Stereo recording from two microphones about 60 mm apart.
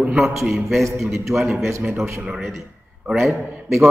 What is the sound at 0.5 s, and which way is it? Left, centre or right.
A man's voice, centre.